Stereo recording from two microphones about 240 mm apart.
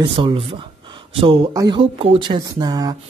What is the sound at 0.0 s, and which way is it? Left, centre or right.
Speech, centre.